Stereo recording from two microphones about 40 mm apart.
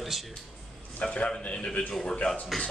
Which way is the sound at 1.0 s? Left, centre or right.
Left.